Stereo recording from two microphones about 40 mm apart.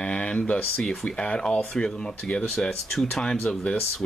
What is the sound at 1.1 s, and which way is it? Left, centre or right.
Speech, left.